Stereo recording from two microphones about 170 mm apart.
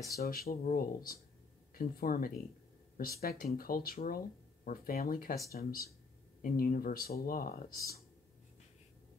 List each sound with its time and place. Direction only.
0.2 s speech: 60° left (ahead or behind)